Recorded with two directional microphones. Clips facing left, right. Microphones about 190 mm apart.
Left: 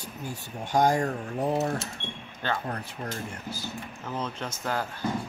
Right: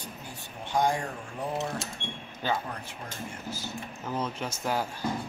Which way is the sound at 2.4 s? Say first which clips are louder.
Right 1 dB; 10° right (ahead or behind).